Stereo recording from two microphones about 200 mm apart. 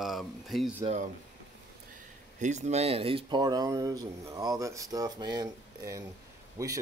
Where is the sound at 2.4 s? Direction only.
35° right (ahead or behind).